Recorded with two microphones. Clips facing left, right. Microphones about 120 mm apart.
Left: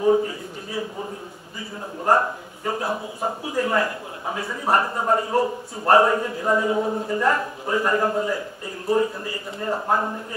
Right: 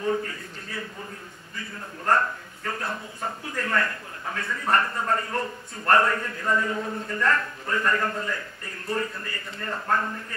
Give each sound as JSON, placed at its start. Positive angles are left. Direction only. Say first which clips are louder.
{"t": 0.0, "sound": "a man's voice", "louder": "left 8 dB", "side_deg": 15}
{"t": 2.0, "sound": "speech", "louder": "left 4 dB", "side_deg": 20}